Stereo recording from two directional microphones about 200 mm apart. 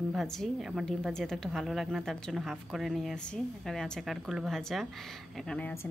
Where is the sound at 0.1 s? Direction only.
Centre (ahead or behind).